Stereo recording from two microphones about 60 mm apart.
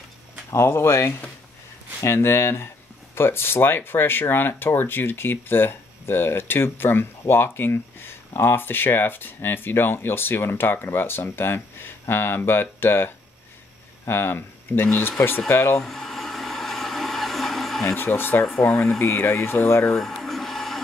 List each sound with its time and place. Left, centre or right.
0.5 s speech: left
2.1 s speech: left
15.8 s blender: centre
17.9 s speech: left
18.5 s speech: left
19.1 s speech: left
19.9 s a sound: centre